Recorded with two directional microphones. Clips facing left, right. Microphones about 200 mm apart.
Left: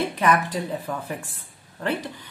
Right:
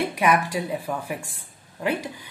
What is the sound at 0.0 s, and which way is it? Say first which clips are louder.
A woman's voice: even; 10° right (ahead or behind).